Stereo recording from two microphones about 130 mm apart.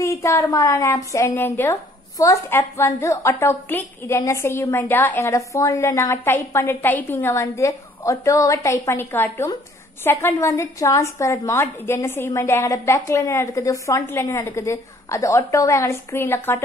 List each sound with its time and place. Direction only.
0.0 s a woman's voice: 20° left (ahead or behind)
2.1 s a woman's voice: 25° left (ahead or behind)